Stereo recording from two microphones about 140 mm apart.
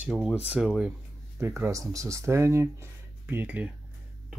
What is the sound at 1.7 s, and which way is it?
Speech, 25° right (ahead or behind).